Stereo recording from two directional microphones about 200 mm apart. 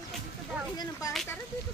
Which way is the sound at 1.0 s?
15° left (ahead or behind).